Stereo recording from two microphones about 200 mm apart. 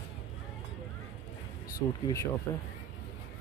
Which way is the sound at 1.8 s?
15° left (ahead or behind).